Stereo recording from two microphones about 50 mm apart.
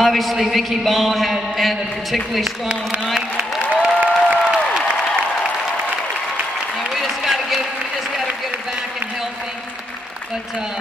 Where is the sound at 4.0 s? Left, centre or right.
Right.